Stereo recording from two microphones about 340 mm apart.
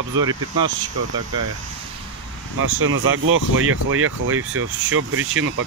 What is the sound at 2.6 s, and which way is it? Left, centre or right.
Speech, right.